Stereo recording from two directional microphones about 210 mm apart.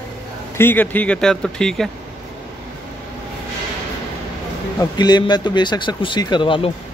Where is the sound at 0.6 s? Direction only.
10° left (ahead or behind).